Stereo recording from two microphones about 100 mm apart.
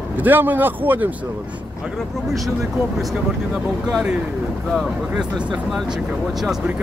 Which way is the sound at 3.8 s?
10° right (ahead or behind).